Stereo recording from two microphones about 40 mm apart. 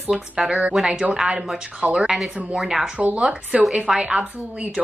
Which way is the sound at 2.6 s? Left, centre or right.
Centre.